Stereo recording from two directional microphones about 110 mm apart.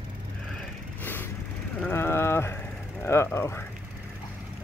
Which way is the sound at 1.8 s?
20° left (ahead or behind).